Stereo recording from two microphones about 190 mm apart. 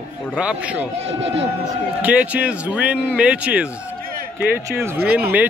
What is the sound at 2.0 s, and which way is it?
Speech, 5° right (ahead or behind).